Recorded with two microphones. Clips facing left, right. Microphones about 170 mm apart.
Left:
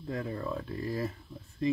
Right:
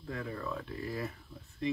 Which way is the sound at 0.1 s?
30° left (ahead or behind).